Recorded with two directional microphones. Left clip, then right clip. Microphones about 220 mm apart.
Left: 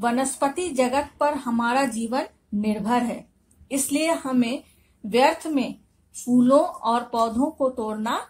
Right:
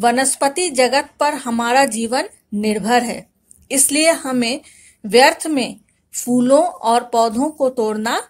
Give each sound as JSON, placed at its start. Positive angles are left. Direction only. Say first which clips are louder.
{"t": 0.0, "sound": "speech", "louder": "right 8 dB", "side_deg": -50}